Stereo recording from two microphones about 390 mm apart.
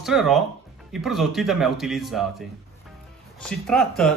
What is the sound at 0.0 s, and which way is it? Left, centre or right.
A man's voice, centre.